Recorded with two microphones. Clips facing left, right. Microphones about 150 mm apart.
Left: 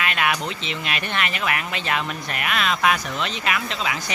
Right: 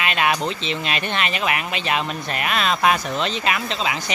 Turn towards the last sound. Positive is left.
turn(degrees=-25)  # may be behind; listen again after turning